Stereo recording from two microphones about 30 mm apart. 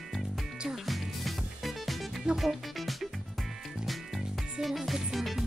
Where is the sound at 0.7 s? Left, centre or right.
Centre.